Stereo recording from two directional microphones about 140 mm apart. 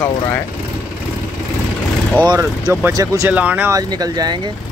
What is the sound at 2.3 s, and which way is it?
Speech, 25° right (ahead or behind).